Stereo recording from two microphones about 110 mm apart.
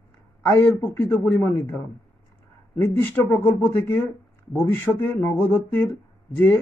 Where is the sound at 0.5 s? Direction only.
15° left (ahead or behind).